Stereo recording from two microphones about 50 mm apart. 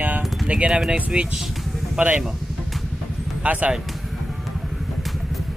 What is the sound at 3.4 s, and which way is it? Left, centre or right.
Speech, right.